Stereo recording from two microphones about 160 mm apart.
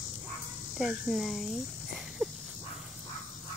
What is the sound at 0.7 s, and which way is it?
Speech, centre (ahead or behind).